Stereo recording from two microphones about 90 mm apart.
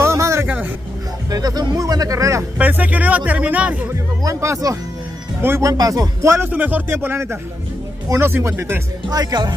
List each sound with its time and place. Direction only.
0.0 s vehicle: 30° right (ahead or behind)
1.3 s speech: 45° right (ahead or behind)
2.6 s speech: 20° right (ahead or behind)
3.9 s speech: 35° right (ahead or behind)
6.3 s speech: 20° right (ahead or behind)
9.1 s speech: 50° right (ahead or behind)